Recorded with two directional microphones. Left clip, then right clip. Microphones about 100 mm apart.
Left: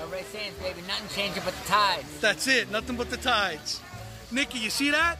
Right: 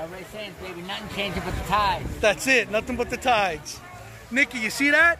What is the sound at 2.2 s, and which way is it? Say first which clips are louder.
A man's voice: right 4 dB; 10° left (ahead or behind).